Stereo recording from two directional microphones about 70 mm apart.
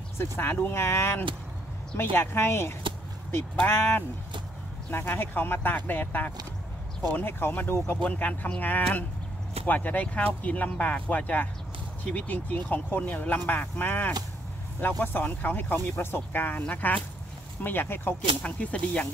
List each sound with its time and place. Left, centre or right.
0.2 s speech: left
8.0 s speech: left
18.4 s speech: centre